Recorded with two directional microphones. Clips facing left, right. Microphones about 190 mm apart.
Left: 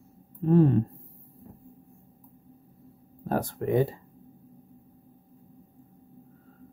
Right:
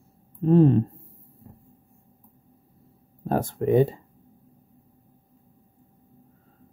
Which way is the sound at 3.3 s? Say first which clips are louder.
Right 4 dB; 25° right (ahead or behind).